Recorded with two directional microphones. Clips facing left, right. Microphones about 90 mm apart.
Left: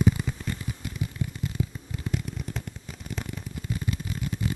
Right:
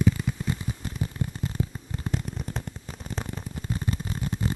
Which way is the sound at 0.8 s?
40° right (ahead or behind).